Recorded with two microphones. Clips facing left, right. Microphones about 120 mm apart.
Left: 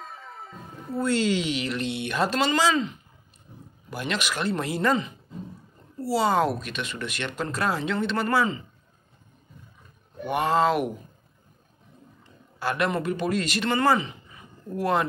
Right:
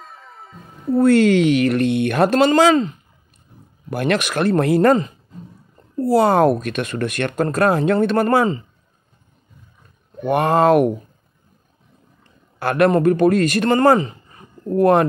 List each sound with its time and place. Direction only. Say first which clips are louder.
0.0 s music: even; centre (ahead or behind)
0.9 s speech: right 11 dB; 55° right (ahead or behind)
3.9 s speech: right 10 dB; 55° right (ahead or behind)
10.2 s speech: right 7 dB; 55° right (ahead or behind)
12.5 s a man's voice: right 10 dB; 55° right (ahead or behind)